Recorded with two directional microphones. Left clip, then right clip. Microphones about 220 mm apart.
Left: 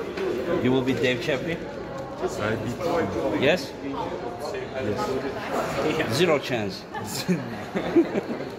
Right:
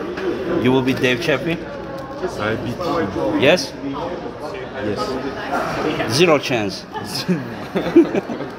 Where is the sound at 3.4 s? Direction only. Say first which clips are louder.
Right 8 dB; 25° right (ahead or behind).